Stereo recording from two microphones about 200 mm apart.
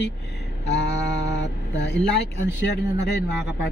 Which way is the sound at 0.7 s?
60° left (ahead or behind).